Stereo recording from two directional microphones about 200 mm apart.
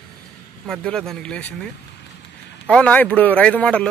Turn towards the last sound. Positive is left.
turn(degrees=5)  # may be behind; listen again after turning